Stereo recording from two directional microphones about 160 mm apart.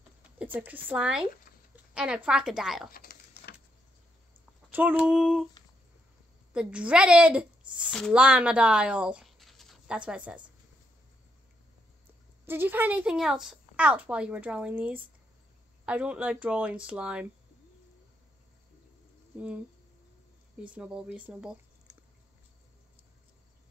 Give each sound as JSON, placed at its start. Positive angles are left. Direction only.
{"t": 0.4, "sound": "a woman's voice", "side_deg": -10}
{"t": 1.5, "sound": "a sound", "side_deg": 60}
{"t": 2.0, "sound": "a woman's voice", "side_deg": -5}
{"t": 2.9, "sound": "a sound", "side_deg": 65}
{"t": 4.6, "sound": "a woman's voice", "side_deg": -10}
{"t": 6.5, "sound": "a woman's voice", "side_deg": -5}
{"t": 12.4, "sound": "a woman's voice", "side_deg": -15}
{"t": 19.3, "sound": "speech", "side_deg": -10}
{"t": 20.6, "sound": "a woman's voice", "side_deg": -10}